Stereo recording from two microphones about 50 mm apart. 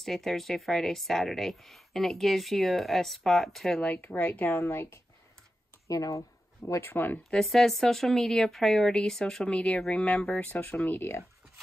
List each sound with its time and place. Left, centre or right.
0.0 s speech: centre
3.8 s speech: left
4.5 s a woman's voice: left
5.9 s speech: left
6.9 s speech: left
7.3 s speech: centre
10.6 s speech: left